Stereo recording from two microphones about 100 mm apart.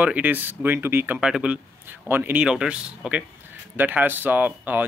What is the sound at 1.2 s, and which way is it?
Speech, 10° right (ahead or behind).